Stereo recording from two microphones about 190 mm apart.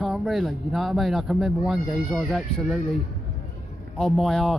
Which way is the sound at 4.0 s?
Centre (ahead or behind).